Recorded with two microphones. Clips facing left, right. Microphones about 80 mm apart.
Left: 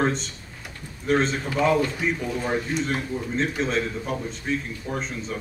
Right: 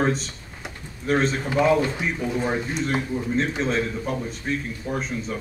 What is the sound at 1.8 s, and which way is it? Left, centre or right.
Speech, right.